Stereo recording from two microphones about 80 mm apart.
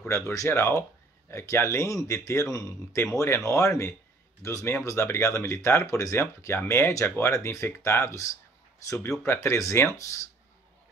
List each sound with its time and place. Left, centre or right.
0.1 s speech: left